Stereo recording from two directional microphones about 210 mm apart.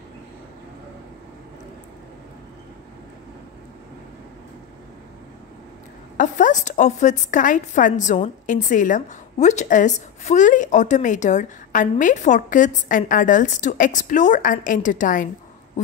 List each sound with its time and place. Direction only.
6.1 s a woman's voice: 35° left (ahead or behind)